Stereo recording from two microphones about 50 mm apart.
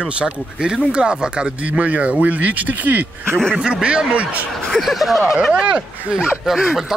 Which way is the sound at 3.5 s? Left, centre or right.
Centre.